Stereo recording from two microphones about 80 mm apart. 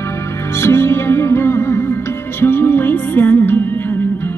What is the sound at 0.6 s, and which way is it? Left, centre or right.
Music, left.